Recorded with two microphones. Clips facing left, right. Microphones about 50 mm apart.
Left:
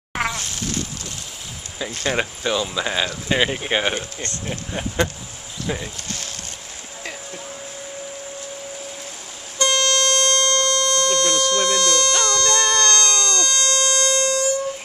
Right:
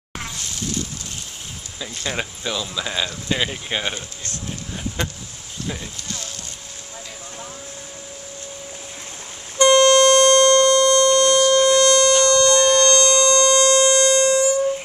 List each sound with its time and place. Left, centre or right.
0.1 s a sound: left
2.0 s speech: centre
5.7 s speech: centre
6.0 s insect: left
9.6 s music: right